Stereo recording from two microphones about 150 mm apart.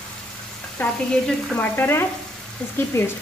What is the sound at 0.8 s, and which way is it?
Frying, 10° left (ahead or behind).